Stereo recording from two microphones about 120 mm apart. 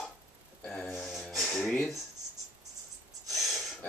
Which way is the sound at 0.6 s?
10° left (ahead or behind).